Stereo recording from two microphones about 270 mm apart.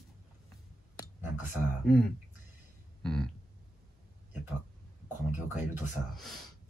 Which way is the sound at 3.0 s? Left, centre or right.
Centre.